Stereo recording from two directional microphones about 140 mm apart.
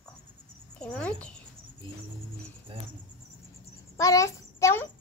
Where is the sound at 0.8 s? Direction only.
10° left (ahead or behind).